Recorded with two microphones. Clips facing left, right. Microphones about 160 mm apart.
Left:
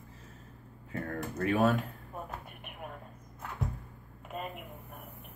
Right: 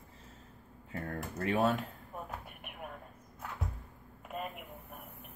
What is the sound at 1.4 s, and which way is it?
Speech, 25° right (ahead or behind).